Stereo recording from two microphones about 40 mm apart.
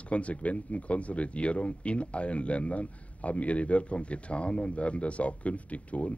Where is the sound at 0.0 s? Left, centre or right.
Left.